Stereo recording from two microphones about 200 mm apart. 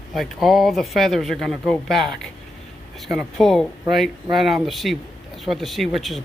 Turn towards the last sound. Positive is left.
turn(degrees=0)  # may be behind; listen again after turning